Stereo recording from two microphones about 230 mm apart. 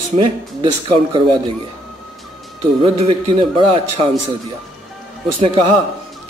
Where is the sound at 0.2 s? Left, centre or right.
Right.